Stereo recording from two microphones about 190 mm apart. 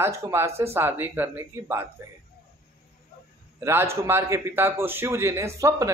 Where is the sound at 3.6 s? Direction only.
15° right (ahead or behind).